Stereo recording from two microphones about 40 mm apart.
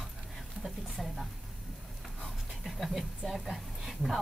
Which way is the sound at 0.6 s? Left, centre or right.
Centre.